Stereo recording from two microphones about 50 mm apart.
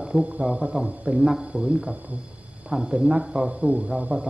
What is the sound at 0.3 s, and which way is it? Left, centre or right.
A man's voice, centre.